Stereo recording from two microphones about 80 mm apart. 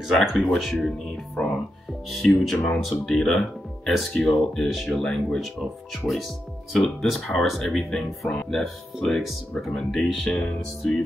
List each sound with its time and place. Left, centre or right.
0.1 s speech: centre
4.6 s speech: centre